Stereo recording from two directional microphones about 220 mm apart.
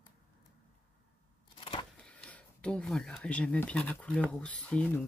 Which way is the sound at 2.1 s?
5° left (ahead or behind).